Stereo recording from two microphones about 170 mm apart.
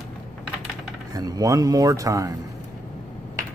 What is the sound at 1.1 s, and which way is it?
Speech, 20° right (ahead or behind).